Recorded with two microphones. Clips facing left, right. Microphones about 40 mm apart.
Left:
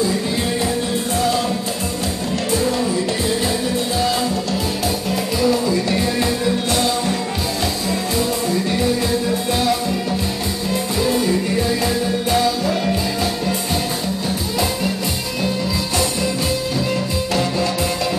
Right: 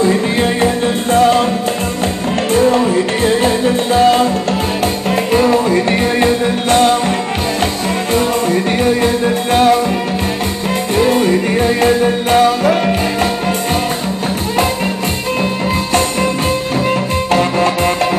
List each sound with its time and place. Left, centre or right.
0.0 s music: right
2.5 s music: right
11.0 s music: right
17.3 s music: right